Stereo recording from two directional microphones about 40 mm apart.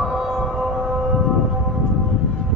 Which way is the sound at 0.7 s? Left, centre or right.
Centre.